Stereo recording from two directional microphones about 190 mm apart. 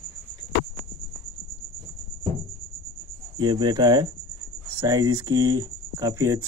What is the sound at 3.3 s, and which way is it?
Speech, 20° right (ahead or behind).